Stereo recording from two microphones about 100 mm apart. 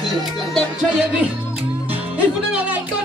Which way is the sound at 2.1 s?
15° right (ahead or behind).